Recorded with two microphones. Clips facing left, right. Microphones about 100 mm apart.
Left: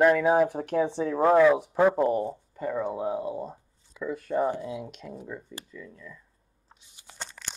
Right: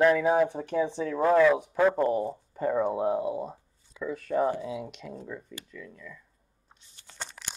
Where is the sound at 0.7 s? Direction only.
65° left (ahead or behind).